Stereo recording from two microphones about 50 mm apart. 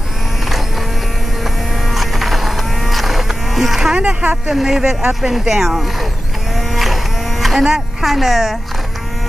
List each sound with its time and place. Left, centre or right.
1.4 s insect: centre
4.0 s speech: right
4.5 s speech: centre
6.5 s livestock: centre
8.0 s speech: centre